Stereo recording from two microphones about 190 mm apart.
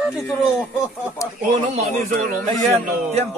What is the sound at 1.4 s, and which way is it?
Speech, 35° right (ahead or behind).